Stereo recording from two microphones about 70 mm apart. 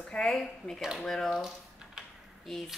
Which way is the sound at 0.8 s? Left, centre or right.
Centre.